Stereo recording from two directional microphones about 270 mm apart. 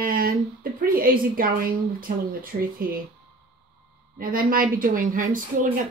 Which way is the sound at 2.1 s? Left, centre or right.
Right.